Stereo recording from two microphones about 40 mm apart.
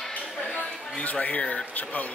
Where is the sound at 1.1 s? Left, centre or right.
Left.